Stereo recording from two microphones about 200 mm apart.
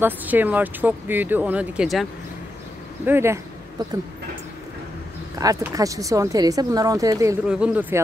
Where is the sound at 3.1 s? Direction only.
15° right (ahead or behind).